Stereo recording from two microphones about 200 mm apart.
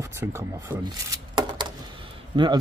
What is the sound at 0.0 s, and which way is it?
Speech, 15° right (ahead or behind).